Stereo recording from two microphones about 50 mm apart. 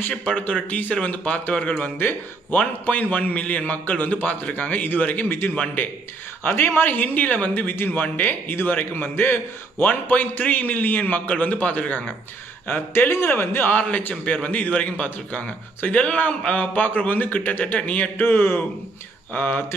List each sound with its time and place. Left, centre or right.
0.2 s a man's voice: left
6.4 s a man's voice: left
12.6 s a man's voice: left
13.7 s a man's voice: left
18.2 s a man's voice: left